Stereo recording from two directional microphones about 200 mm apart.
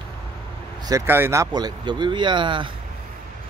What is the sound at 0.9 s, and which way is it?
Speech, 15° right (ahead or behind).